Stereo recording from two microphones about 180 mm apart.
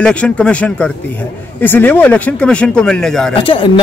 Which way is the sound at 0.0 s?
5° left (ahead or behind).